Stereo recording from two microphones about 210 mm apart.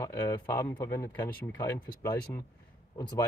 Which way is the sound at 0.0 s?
15° left (ahead or behind).